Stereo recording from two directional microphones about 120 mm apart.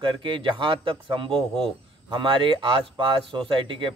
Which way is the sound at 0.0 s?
45° right (ahead or behind).